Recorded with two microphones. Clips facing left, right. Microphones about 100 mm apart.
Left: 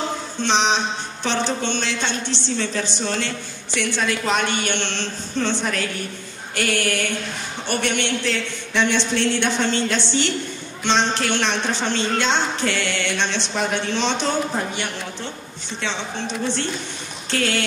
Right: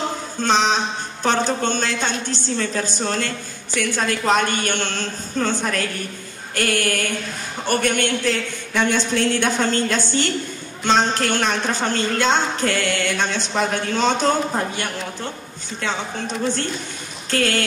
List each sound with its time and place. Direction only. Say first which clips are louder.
0.4 s speech: right 2 dB; 45° right (ahead or behind)